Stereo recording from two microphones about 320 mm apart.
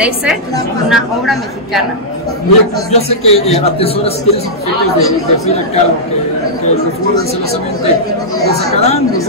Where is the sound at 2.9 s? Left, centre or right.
Centre.